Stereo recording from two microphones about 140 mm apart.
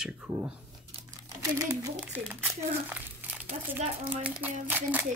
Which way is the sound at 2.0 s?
10° right (ahead or behind).